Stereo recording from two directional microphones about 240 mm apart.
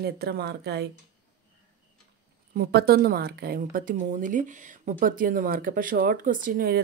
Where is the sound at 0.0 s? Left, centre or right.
Right.